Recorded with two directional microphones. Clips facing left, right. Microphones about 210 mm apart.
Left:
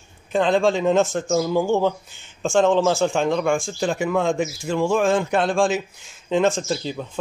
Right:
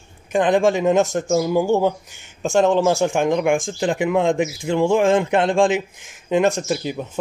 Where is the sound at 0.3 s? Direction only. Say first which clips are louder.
Right 2 dB; 15° right (ahead or behind).